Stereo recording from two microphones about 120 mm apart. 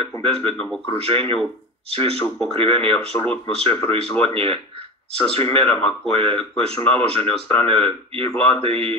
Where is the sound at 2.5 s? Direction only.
50° right (ahead or behind).